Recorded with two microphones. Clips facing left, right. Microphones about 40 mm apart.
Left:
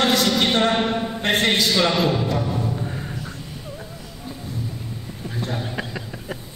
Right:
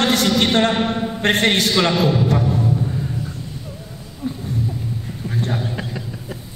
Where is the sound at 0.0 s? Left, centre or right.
Right.